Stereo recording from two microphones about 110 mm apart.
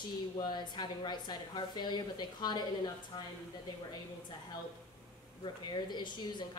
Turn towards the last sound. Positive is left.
turn(degrees=45)  # may be behind; listen again after turning